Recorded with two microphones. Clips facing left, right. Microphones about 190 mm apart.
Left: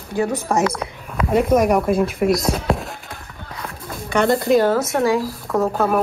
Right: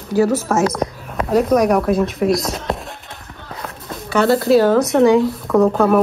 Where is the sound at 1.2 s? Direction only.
Centre (ahead or behind).